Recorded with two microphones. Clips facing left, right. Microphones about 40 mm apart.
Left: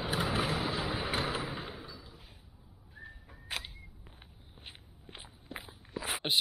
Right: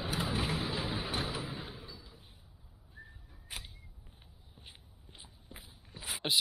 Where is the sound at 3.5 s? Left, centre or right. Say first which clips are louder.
Left 7 dB; left.